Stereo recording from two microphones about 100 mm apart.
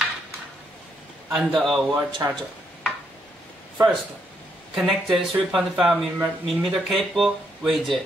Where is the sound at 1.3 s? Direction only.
Centre (ahead or behind).